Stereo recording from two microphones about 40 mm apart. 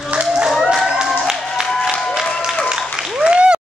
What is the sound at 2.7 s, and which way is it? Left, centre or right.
Applause, right.